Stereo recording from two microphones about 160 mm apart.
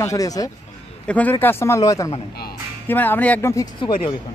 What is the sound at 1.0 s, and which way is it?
A man's voice, 10° left (ahead or behind).